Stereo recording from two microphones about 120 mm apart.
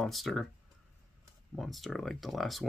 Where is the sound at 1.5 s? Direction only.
Centre (ahead or behind).